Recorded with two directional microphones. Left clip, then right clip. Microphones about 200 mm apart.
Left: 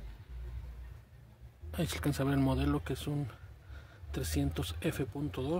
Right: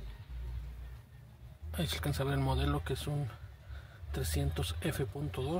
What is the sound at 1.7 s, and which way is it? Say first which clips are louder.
Speech: left 2 dB; 25° left (ahead or behind).